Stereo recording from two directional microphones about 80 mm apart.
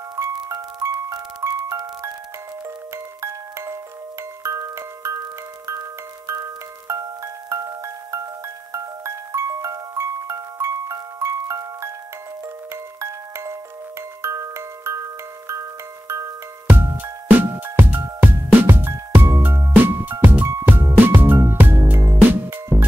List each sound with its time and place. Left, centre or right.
0.1 s glockenspiel: right
3.2 s glockenspiel: right
7.4 s glockenspiel: right
13.0 s glockenspiel: right
14.2 s music: right
16.6 s music: right
19.7 s music: right